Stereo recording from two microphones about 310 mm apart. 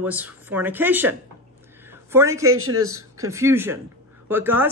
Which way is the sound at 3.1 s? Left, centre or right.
Centre.